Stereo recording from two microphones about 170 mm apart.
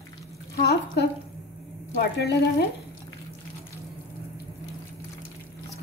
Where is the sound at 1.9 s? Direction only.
75° left (ahead or behind).